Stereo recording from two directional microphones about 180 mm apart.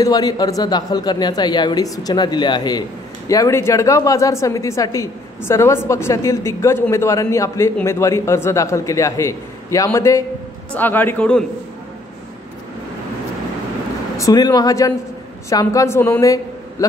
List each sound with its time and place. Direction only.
0.0 s a woman's voice: 20° left (ahead or behind)
14.1 s a woman's voice: 20° left (ahead or behind)